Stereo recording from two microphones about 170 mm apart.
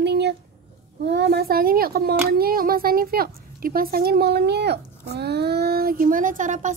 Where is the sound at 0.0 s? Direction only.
80° right.